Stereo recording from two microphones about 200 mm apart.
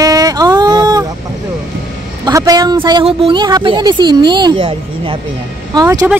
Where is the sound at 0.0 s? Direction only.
20° right (ahead or behind).